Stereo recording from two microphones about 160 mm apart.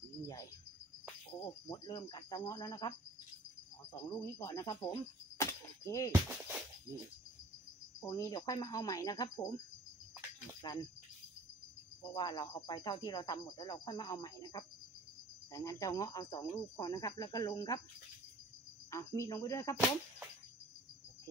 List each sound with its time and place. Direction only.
1.4 s speech: 25° left (ahead or behind)
3.9 s speech: 20° left (ahead or behind)
5.4 s a sound: 20° left (ahead or behind)
6.1 s speech: 10° right (ahead or behind)
8.0 s speech: 20° left (ahead or behind)
10.6 s speech: 30° left (ahead or behind)
12.0 s speech: 25° left (ahead or behind)
18.9 s speech: 20° left (ahead or behind)